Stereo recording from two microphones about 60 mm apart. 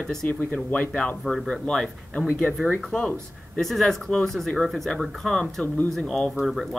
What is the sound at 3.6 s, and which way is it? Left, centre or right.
Speech, centre.